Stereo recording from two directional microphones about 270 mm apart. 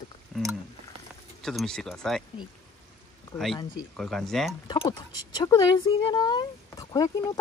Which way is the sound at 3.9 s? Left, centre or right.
Centre.